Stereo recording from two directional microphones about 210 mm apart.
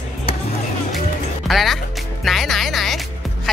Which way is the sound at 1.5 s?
Centre (ahead or behind).